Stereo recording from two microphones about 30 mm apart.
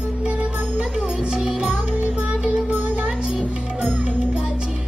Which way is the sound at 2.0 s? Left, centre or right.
Right.